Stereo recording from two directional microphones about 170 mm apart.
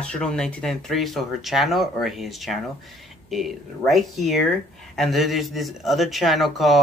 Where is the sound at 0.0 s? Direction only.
5° left (ahead or behind).